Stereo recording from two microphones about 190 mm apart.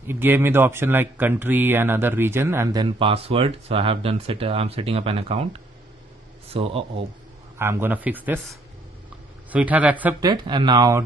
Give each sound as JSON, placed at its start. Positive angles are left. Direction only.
{"t": 0.0, "sound": "speech", "side_deg": -10}
{"t": 7.5, "sound": "speech", "side_deg": -10}
{"t": 9.5, "sound": "speech", "side_deg": -10}
{"t": 10.2, "sound": "speech", "side_deg": -25}